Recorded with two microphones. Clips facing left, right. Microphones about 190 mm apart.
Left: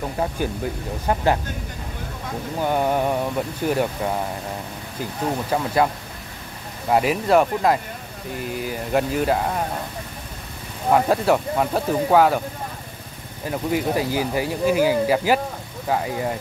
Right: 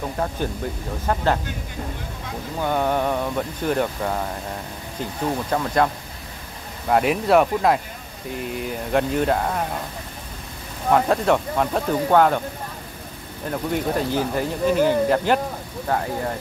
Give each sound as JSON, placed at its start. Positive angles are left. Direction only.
{"t": 0.2, "sound": "speech", "side_deg": 10}
{"t": 2.6, "sound": "speech", "side_deg": 10}
{"t": 5.5, "sound": "speech", "side_deg": 5}
{"t": 6.9, "sound": "speech", "side_deg": 0}
{"t": 10.9, "sound": "speech", "side_deg": 5}
{"t": 13.5, "sound": "speech", "side_deg": 5}